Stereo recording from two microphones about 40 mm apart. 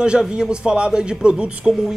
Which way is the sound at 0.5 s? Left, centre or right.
Right.